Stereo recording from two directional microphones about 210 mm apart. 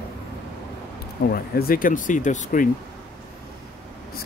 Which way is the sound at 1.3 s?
45° left (ahead or behind).